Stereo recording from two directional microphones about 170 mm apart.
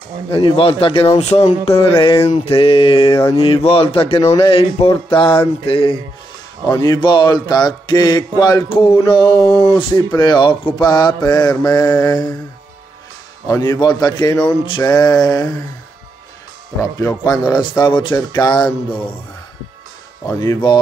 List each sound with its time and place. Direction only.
0.3 s speech: 30° left (ahead or behind)
6.7 s speech: 20° left (ahead or behind)
13.5 s speech: 15° left (ahead or behind)
17.0 s speech: 20° left (ahead or behind)
20.2 s speech: 15° left (ahead or behind)